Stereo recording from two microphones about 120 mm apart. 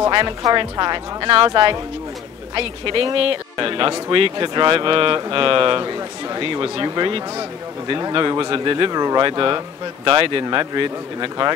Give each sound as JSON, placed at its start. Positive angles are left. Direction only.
{"t": 0.4, "sound": "speech", "side_deg": -30}
{"t": 1.3, "sound": "speech", "side_deg": -50}